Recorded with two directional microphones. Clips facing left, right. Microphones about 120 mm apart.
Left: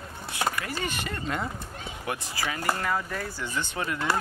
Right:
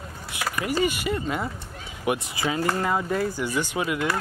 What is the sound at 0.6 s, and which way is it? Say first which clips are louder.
Speech: right 8 dB; 10° right (ahead or behind).